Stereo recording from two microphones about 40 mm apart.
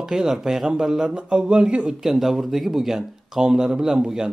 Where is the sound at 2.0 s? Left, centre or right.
Centre.